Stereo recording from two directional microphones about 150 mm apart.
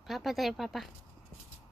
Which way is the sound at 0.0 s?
Centre (ahead or behind).